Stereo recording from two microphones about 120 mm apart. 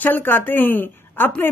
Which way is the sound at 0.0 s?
15° left (ahead or behind).